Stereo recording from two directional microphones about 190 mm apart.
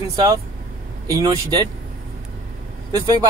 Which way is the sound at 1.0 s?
20° right (ahead or behind).